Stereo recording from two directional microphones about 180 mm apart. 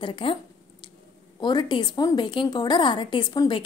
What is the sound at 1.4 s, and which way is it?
A woman's voice, 25° left (ahead or behind).